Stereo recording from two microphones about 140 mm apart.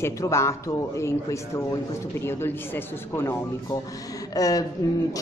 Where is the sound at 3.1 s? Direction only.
20° left (ahead or behind).